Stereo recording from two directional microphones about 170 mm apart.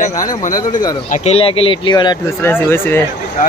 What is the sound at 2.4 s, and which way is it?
Speech, 15° left (ahead or behind).